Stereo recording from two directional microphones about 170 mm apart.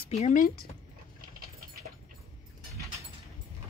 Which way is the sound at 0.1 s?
45° left (ahead or behind).